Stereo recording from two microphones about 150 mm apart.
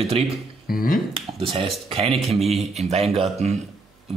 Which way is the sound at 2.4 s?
Centre (ahead or behind).